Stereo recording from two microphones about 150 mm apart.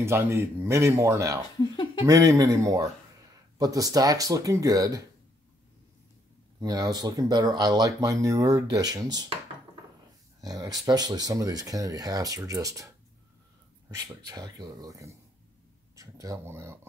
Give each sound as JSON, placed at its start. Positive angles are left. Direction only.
{"t": 0.0, "sound": "speech", "side_deg": -15}
{"t": 1.6, "sound": "speech", "side_deg": 30}
{"t": 2.0, "sound": "speech", "side_deg": -25}
{"t": 6.6, "sound": "speech", "side_deg": -25}
{"t": 10.4, "sound": "speech", "side_deg": -25}